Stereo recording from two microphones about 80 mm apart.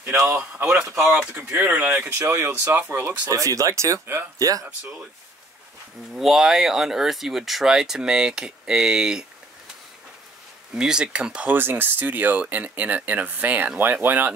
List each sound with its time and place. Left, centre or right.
0.2 s speech: right
2.0 s speech: right
3.3 s speech: right
4.4 s speech: right
6.1 s speech: centre
10.7 s speech: centre
11.5 s speech: right